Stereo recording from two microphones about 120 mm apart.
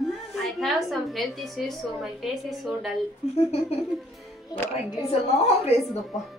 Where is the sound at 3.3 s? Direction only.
55° left (ahead or behind).